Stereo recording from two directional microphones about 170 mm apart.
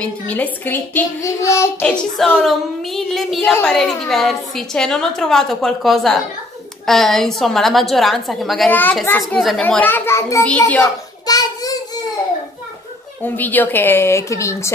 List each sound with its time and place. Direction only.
0.0 s a child's voice: 10° left (ahead or behind)
9.2 s a woman's voice: centre (ahead or behind)
11.2 s a sound: 20° left (ahead or behind)
13.2 s a child's voice: 10° left (ahead or behind)